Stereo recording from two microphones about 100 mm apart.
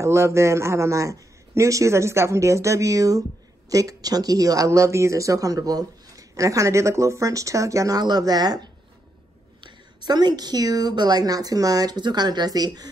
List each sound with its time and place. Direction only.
0.0 s a man's voice: 30° right (ahead or behind)